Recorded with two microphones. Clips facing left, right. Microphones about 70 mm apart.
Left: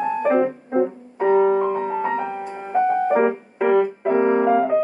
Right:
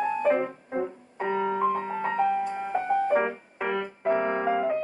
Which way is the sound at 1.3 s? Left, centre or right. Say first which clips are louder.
Left 11 dB; left.